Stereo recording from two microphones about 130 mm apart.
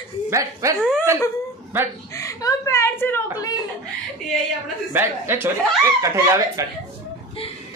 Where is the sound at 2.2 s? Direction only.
25° left (ahead or behind).